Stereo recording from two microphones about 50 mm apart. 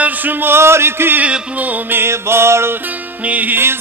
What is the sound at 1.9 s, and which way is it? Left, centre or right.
Music, right.